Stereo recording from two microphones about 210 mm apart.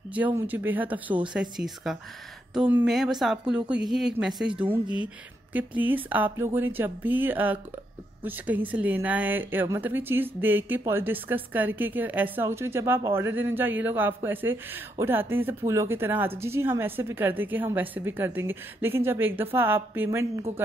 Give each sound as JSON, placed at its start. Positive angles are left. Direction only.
{"t": 0.1, "sound": "a woman's voice", "side_deg": -10}